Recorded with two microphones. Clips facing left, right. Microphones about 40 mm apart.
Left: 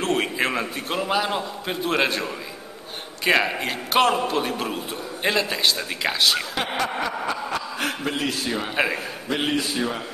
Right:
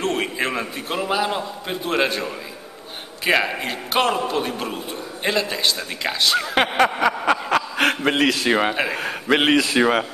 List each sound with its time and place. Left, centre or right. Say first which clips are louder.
0.0 s a man's voice: even; centre
6.8 s a man's voice: right 7 dB; right